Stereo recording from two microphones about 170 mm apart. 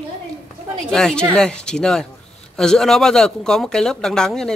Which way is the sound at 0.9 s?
5° left (ahead or behind).